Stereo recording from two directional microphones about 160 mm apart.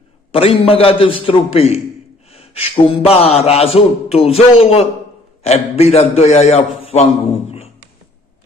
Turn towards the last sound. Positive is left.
turn(degrees=40)  # may be behind; listen again after turning